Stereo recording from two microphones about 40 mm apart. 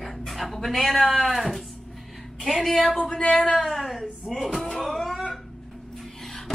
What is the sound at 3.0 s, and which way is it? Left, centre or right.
Speech, left.